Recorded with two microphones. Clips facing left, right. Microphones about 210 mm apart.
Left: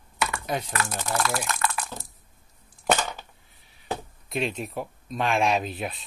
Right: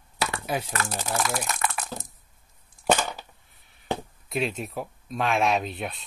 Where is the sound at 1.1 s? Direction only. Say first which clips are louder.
Left 1 dB; 15° right (ahead or behind).